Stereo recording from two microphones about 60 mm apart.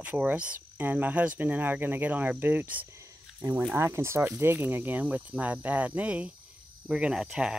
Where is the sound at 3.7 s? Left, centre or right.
Right.